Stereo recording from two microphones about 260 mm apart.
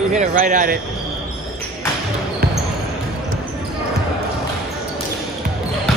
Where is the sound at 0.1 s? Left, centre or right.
Right.